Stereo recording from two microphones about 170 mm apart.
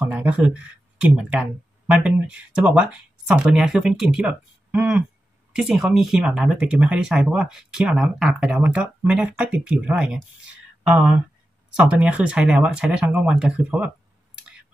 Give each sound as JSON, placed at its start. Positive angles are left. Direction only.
{"t": 0.0, "sound": "speech", "side_deg": -10}
{"t": 11.7, "sound": "speech", "side_deg": -5}